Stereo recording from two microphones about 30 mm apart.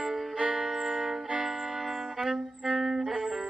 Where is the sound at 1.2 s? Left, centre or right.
Right.